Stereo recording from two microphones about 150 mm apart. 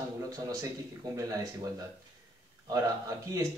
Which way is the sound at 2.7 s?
20° right (ahead or behind).